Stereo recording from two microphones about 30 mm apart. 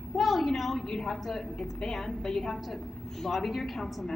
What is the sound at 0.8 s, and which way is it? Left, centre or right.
A woman's voice, centre.